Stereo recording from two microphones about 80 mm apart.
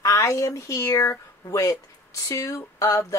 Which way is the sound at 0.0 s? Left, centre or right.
Left.